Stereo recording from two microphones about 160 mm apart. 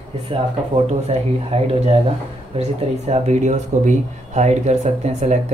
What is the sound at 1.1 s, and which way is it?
Speech, 40° right (ahead or behind).